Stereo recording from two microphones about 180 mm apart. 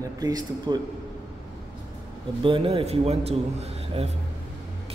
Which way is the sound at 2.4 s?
30° right (ahead or behind).